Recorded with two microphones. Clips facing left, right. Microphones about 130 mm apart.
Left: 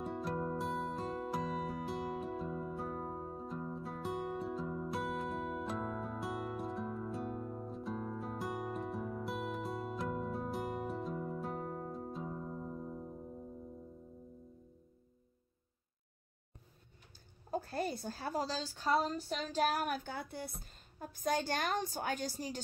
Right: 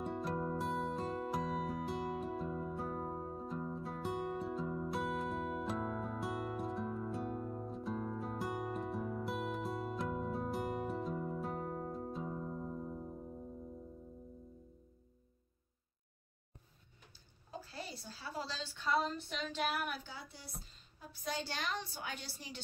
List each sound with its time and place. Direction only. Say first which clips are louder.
0.0 s music: even; centre (ahead or behind)
17.5 s a woman's voice: left 10 dB; 50° left (ahead or behind)